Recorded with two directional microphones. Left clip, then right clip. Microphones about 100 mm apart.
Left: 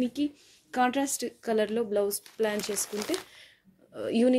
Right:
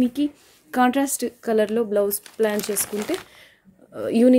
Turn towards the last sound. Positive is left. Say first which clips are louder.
# right 8 dB
turn(degrees=-35)  # may be behind; listen again after turning